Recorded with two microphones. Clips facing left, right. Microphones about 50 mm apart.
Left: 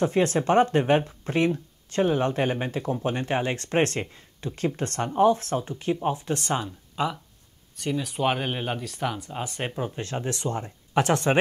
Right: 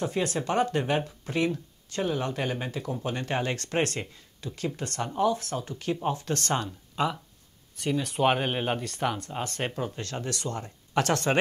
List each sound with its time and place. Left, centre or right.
0.0 s speech: left; by 6.5 s centre
6.5 s speech: centre